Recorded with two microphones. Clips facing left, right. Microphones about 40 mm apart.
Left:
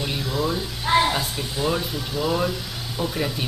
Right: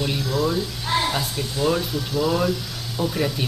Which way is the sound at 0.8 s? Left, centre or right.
Centre.